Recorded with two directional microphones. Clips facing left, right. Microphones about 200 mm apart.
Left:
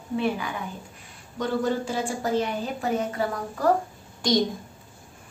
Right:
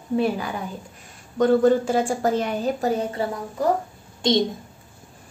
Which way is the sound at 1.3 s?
50° right (ahead or behind).